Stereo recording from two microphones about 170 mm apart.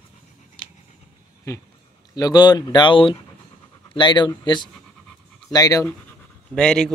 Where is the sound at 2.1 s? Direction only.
25° left (ahead or behind).